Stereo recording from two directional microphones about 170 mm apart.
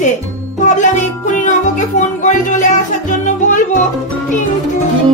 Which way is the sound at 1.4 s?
45° left (ahead or behind).